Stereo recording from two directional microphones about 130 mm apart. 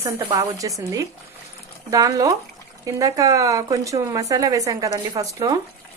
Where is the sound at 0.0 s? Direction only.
25° right (ahead or behind).